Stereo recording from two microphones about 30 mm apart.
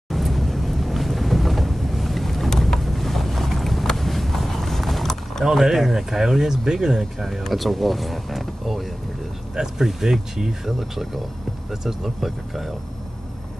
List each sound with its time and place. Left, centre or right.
0.1 s boat: centre
3.9 s vehicle: centre
5.5 s speech: centre
7.0 s speech: centre
9.6 s speech: centre